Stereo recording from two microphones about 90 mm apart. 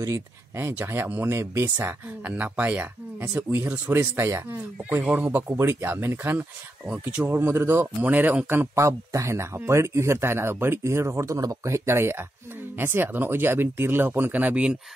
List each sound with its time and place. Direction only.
0.0 s speech: 30° right (ahead or behind)
4.0 s speech: 30° right (ahead or behind)
5.1 s speech: 15° right (ahead or behind)
5.5 s speech: 30° right (ahead or behind); by 7.2 s 15° right (ahead or behind)
7.2 s speech: 25° right (ahead or behind)